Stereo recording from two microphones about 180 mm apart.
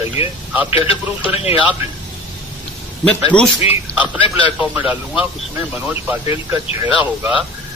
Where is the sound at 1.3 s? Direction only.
35° left (ahead or behind).